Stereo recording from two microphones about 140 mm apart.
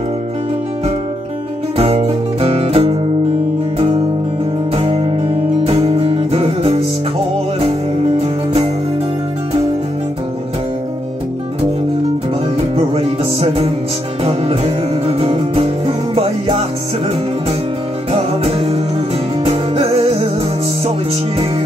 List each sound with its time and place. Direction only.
1.8 s music: 45° right (ahead or behind)
12.5 s music: 45° right (ahead or behind)
18.1 s music: 45° right (ahead or behind)